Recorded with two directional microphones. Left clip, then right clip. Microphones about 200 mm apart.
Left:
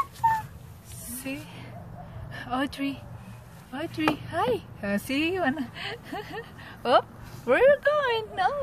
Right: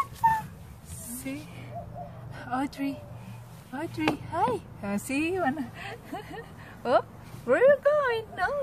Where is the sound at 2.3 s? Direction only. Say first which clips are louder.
Left 2 dB; 30° left (ahead or behind).